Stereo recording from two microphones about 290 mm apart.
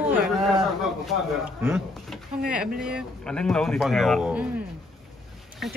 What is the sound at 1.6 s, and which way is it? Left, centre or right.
Speech, centre.